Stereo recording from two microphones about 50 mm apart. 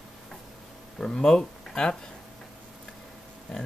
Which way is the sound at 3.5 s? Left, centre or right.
Centre.